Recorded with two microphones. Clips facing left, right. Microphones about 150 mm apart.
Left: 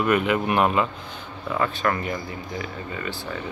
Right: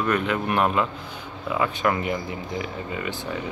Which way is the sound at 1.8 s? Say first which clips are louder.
Right 1 dB; 20° right (ahead or behind).